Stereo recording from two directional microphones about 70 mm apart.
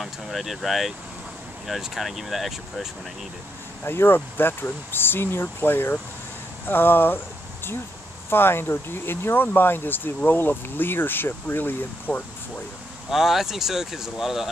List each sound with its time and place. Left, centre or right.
0.0 s speech: centre
3.8 s speech: left
8.3 s speech: left
13.1 s speech: centre